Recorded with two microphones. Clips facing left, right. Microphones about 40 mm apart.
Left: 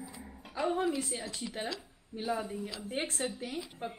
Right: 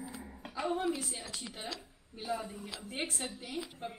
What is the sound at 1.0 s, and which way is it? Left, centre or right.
Speech, centre.